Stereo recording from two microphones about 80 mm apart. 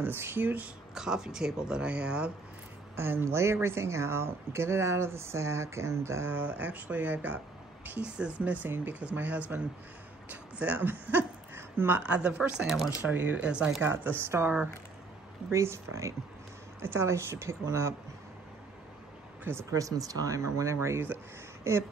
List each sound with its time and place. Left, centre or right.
0.0 s speech: right
0.9 s speech: centre
3.0 s speech: right
12.2 s speech: centre
13.0 s speech: right
13.8 s speech: right
15.5 s speech: right
19.7 s speech: right